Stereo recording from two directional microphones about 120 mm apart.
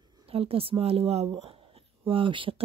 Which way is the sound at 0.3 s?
55° right (ahead or behind).